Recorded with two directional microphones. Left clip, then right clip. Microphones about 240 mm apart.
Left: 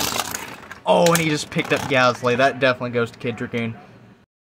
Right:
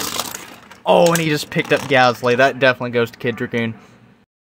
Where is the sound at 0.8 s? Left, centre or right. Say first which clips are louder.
Right 3 dB; right.